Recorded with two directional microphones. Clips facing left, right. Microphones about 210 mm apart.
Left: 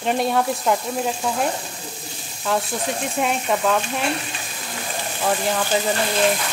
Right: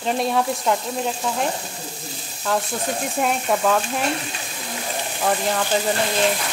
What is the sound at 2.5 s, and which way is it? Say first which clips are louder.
Frying: even; centre (ahead or behind).